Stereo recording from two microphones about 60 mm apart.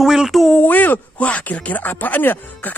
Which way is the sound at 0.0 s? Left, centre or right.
Centre.